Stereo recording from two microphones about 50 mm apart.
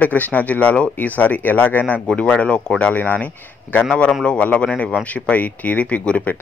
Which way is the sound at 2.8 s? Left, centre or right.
Left.